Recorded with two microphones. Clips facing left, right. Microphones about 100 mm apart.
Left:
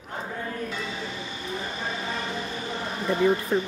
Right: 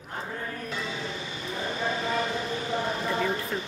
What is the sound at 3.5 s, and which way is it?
Speech, 35° left (ahead or behind).